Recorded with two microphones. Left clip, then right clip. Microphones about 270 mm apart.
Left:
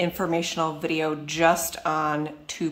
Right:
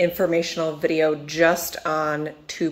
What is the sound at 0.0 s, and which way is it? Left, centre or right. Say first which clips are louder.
Speech: right 5 dB; centre.